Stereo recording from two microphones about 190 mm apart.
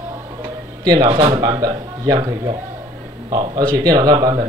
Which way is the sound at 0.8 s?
20° right (ahead or behind).